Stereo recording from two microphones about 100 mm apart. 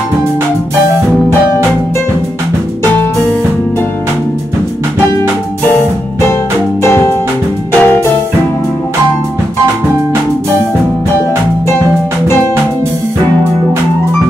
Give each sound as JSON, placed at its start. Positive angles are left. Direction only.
{"t": 6.8, "sound": "music", "side_deg": 25}